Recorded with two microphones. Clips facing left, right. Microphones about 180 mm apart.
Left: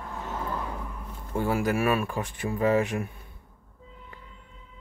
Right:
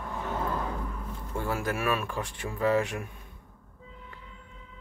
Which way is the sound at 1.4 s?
15° left (ahead or behind).